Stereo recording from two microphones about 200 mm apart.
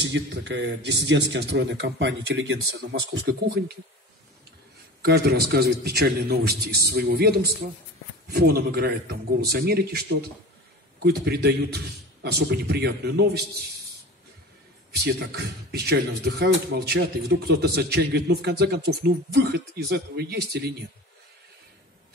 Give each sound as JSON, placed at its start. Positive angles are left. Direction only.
{"t": 0.0, "sound": "speech", "side_deg": -60}
{"t": 5.0, "sound": "a man's voice", "side_deg": -55}
{"t": 15.0, "sound": "a man's voice", "side_deg": -55}